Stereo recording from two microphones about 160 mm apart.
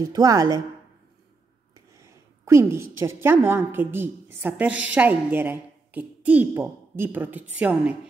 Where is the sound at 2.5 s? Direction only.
15° right (ahead or behind).